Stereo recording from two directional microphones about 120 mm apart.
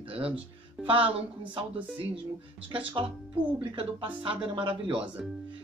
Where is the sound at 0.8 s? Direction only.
50° right (ahead or behind).